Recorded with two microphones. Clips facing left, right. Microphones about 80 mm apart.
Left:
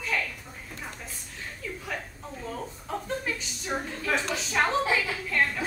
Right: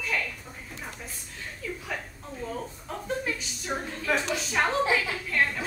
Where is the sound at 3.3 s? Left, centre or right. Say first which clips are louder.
Left 1 dB; centre.